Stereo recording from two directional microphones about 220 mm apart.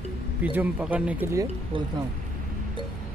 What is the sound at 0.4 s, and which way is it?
Speech, 5° right (ahead or behind).